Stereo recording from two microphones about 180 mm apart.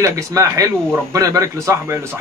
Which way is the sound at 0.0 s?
15° right (ahead or behind).